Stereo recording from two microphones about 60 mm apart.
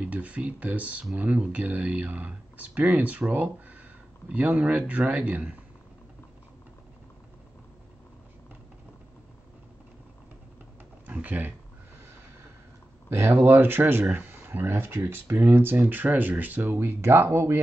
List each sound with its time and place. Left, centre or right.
0.0 s speech: right
11.1 s a sound: right
13.3 s speech: right